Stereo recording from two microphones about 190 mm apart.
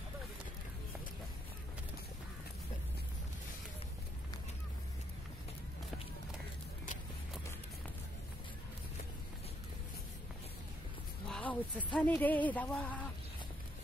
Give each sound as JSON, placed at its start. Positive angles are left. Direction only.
{"t": 11.2, "sound": "speech", "side_deg": 5}